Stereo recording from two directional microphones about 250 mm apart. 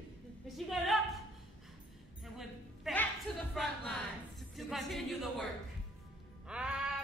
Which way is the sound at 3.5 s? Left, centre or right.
Centre.